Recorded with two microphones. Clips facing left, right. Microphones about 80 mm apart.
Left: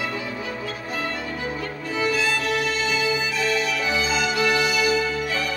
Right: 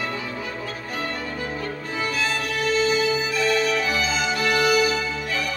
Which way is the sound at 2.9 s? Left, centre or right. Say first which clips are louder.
Right 2 dB; right.